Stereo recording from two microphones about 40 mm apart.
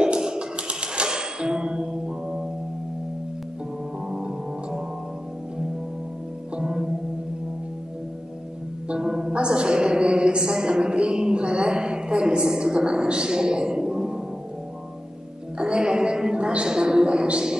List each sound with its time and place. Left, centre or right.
0.0 s music: right
4.1 s music: centre
6.5 s music: centre
8.8 s music: right
15.5 s a sound: right